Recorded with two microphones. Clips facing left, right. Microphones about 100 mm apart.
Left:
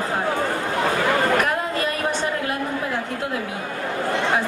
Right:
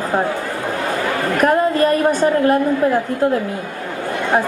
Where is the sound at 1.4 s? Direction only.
40° right (ahead or behind).